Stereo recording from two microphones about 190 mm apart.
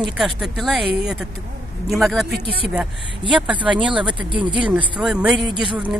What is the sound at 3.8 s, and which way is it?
Speech, 25° right (ahead or behind).